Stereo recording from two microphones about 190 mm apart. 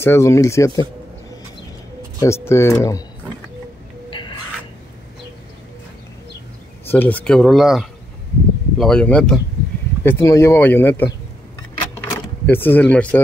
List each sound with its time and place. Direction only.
0.0 s speech: 15° left (ahead or behind)
2.1 s speech: 15° left (ahead or behind)
4.1 s a sound: 25° left (ahead or behind)
6.9 s speech: 10° left (ahead or behind)
11.9 s vehicle: 10° left (ahead or behind)